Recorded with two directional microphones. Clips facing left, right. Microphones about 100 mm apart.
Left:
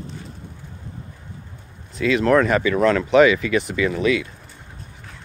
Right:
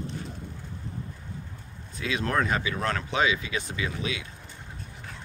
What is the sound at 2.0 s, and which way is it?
Speech, 80° left.